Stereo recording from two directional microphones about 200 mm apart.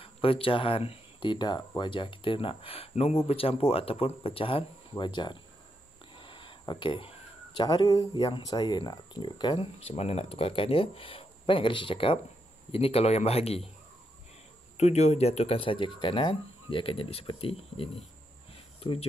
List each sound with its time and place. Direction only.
0.0 s speech: 25° left (ahead or behind)
14.8 s speech: 35° left (ahead or behind)
18.5 s a sound: 30° left (ahead or behind)